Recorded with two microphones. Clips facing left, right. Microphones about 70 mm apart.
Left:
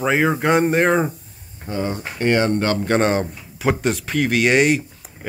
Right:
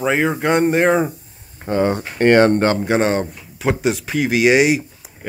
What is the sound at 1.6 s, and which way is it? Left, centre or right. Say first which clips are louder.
Speech: right 7 dB; right.